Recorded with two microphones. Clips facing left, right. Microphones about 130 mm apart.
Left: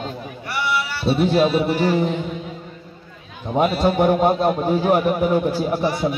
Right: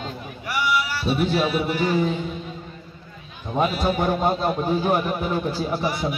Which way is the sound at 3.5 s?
20° left (ahead or behind).